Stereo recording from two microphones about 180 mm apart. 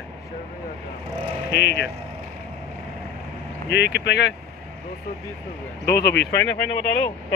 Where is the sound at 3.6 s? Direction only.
70° left (ahead or behind).